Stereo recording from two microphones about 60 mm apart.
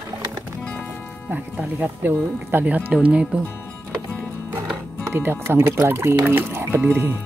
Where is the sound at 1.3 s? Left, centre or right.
Right.